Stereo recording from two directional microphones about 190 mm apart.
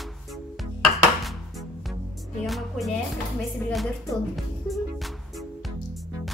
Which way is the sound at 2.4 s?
Centre (ahead or behind).